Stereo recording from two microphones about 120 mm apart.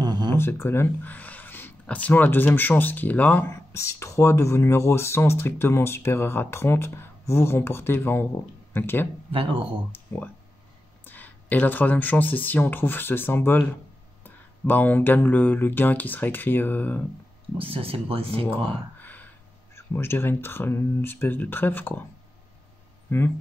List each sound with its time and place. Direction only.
0.0 s a sound: 35° right (ahead or behind)
0.3 s speech: 20° left (ahead or behind)
9.3 s speech: 50° right (ahead or behind)
9.9 s speech: 15° left (ahead or behind)
17.6 s speech: 50° right (ahead or behind)
18.9 s a sound: 15° left (ahead or behind)
19.7 s speech: 20° left (ahead or behind)
23.0 s speech: 20° left (ahead or behind)